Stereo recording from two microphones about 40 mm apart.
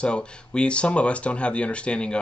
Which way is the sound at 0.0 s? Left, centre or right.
Left.